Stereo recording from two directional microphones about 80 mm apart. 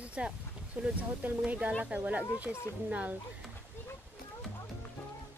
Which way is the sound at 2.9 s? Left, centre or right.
Centre.